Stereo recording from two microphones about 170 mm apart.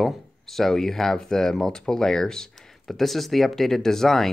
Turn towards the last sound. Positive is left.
turn(degrees=0)  # may be behind; listen again after turning